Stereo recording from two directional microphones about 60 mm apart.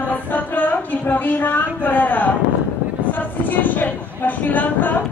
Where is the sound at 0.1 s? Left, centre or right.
Left.